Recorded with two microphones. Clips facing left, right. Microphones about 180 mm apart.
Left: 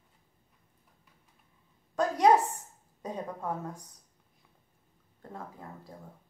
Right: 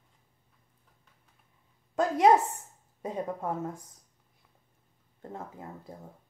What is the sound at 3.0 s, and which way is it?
Speech, 25° right (ahead or behind).